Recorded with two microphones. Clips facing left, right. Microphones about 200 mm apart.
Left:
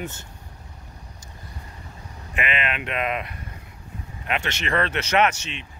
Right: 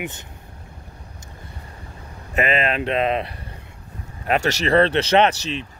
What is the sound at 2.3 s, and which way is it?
Speech, 40° right (ahead or behind).